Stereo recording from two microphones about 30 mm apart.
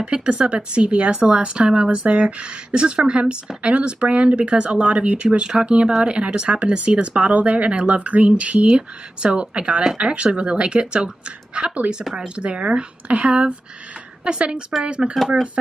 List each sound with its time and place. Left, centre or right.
0.0 s speech: right
8.7 s speech: right
11.9 s speech: centre
12.4 s speech: right
13.0 s speech: right
14.2 s speech: right